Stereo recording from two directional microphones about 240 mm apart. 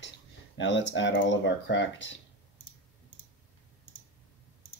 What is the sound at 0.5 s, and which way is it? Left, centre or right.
Speech, left.